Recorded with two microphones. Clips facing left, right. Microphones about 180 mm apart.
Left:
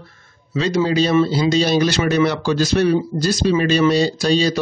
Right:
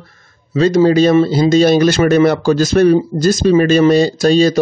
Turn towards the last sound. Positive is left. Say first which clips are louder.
# right 6 dB
turn(degrees=-45)  # may be behind; listen again after turning